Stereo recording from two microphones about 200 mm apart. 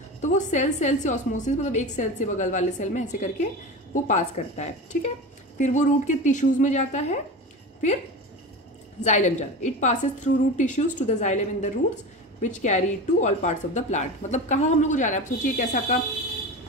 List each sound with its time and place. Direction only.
0.2 s a woman's voice: 35° left (ahead or behind)
9.0 s a woman's voice: 35° left (ahead or behind)